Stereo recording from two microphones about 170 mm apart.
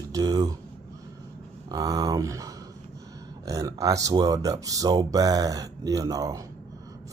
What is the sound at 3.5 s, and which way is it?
Speech, 20° right (ahead or behind).